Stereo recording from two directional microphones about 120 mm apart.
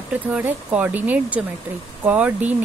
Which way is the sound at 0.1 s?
10° right (ahead or behind).